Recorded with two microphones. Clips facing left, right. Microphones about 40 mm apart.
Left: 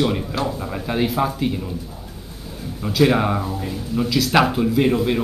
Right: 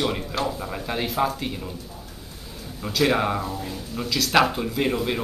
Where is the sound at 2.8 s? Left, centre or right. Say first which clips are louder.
Left 4 dB; centre.